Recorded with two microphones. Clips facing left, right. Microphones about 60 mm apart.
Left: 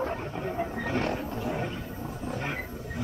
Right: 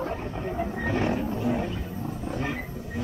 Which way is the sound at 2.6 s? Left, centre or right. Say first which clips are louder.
Right 1 dB; centre.